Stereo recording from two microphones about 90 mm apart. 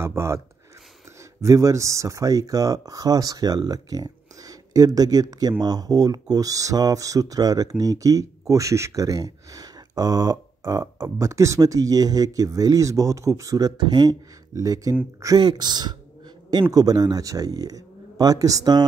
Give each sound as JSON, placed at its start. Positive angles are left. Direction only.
{"t": 0.0, "sound": "speech", "side_deg": -30}
{"t": 1.4, "sound": "speech", "side_deg": -35}
{"t": 15.4, "sound": "speech", "side_deg": -50}